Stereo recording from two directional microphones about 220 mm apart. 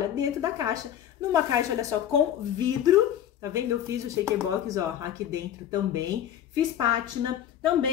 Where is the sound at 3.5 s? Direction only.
15° right (ahead or behind).